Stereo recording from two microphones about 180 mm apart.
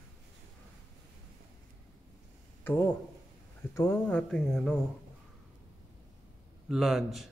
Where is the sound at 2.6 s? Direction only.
15° left (ahead or behind).